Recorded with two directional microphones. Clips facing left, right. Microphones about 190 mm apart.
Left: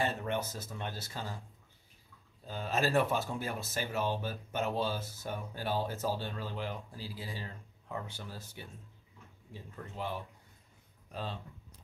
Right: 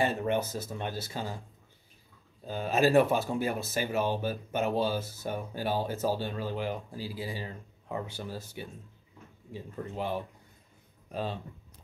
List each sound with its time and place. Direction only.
0.2 s speech: 10° right (ahead or behind)
2.4 s speech: 10° right (ahead or behind)